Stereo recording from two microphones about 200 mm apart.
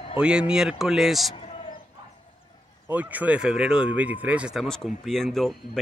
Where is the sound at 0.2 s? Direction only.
5° right (ahead or behind).